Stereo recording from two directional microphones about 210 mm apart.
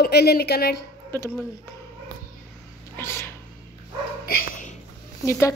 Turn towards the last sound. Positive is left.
turn(degrees=15)  # may be behind; listen again after turning